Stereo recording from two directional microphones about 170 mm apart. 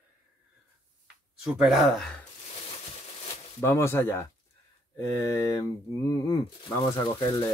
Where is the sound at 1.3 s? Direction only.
5° right (ahead or behind).